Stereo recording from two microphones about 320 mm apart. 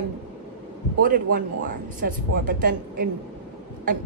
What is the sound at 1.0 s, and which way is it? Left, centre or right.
A woman's voice, right.